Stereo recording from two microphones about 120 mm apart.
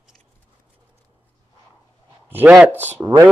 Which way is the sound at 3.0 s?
25° right (ahead or behind).